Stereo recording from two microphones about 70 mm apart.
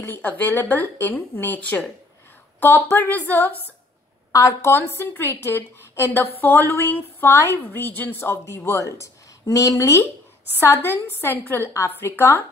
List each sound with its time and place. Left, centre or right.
0.0 s speech: left
4.3 s a woman's voice: left
8.7 s a woman's voice: left